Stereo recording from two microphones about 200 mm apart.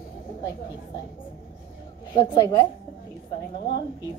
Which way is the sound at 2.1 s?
20° left (ahead or behind).